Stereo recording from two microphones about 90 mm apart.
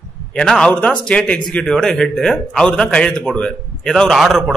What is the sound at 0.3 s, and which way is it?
A man's voice, 10° left (ahead or behind).